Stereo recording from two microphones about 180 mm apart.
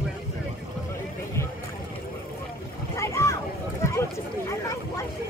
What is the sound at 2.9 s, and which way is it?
Boat, 15° left (ahead or behind).